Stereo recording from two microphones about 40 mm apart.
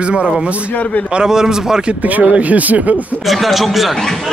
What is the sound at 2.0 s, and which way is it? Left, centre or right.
Speech, right.